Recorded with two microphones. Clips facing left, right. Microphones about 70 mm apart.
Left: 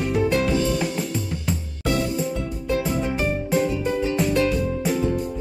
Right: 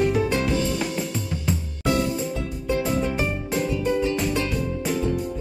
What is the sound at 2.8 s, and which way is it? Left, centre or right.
Music, centre.